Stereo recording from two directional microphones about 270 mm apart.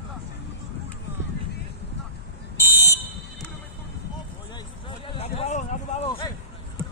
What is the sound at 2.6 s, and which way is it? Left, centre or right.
Fire alarm, centre.